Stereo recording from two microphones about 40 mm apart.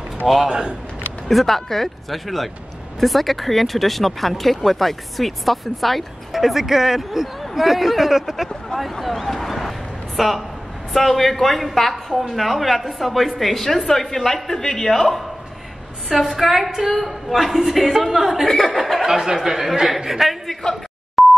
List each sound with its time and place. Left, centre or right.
0.5 s speech: right
1.3 s speech: centre
8.7 s speech: left
9.0 s a sound: centre
10.9 s a woman's voice: centre
16.1 s speech: centre
19.0 s speech: centre
20.6 s a woman's voice: centre
21.2 s dial tone: centre